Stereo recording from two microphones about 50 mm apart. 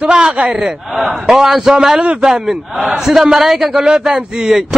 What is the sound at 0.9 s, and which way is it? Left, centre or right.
A man's voice, centre.